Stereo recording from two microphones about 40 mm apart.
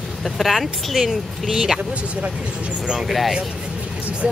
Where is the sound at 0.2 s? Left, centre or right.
Centre.